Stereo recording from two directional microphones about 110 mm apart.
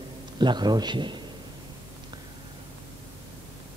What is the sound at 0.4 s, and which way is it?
Speech, 40° right (ahead or behind).